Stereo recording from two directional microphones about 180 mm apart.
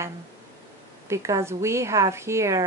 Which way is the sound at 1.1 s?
15° right (ahead or behind).